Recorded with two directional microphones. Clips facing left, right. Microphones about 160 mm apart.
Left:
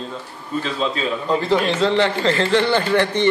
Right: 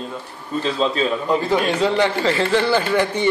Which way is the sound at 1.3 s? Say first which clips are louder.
Left 2 dB; 10° right (ahead or behind).